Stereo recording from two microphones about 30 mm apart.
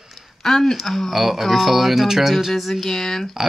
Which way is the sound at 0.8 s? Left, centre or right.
Centre.